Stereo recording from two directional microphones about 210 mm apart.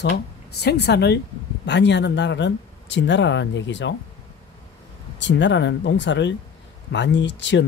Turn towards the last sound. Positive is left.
turn(degrees=55)  # may be behind; listen again after turning